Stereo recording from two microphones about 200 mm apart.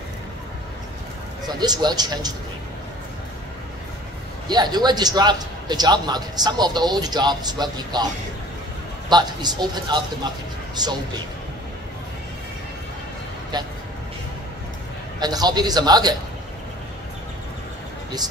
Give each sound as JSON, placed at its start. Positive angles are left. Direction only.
{"t": 1.6, "sound": "a man's voice", "side_deg": -20}
{"t": 4.5, "sound": "a man's voice", "side_deg": -20}
{"t": 9.1, "sound": "a man's voice", "side_deg": -20}
{"t": 15.1, "sound": "a man's voice", "side_deg": -20}